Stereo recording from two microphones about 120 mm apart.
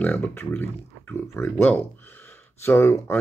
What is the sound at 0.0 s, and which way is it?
Speech, 15° left (ahead or behind).